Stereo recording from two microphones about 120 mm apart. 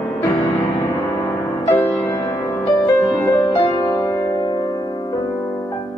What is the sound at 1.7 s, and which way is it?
Music, 20° left (ahead or behind).